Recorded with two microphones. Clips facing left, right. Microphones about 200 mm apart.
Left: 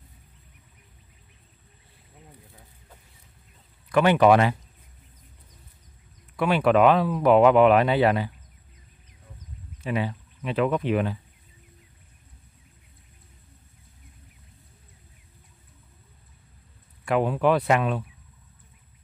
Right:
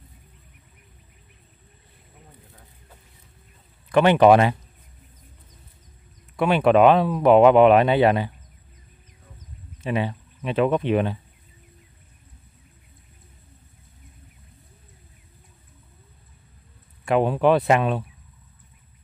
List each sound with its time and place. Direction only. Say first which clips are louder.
3.9 s speech: right 3 dB; 25° right (ahead or behind)
6.3 s speech: right 3 dB; 25° right (ahead or behind)
9.8 s speech: right 2 dB; 25° right (ahead or behind)
17.0 s speech: right 3 dB; 25° right (ahead or behind)